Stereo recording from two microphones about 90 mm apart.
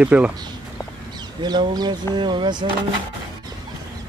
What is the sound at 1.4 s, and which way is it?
Speech, 55° right (ahead or behind).